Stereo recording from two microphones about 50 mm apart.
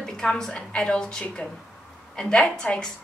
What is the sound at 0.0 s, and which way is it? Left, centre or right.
A woman's voice, centre.